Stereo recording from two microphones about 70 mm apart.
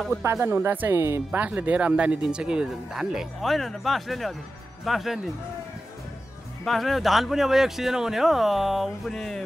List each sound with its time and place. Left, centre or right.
0.1 s speech: right
1.4 s speech: right; by 5.3 s centre
6.6 s speech: centre